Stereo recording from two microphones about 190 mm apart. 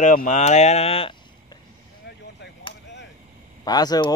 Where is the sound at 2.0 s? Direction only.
65° left (ahead or behind).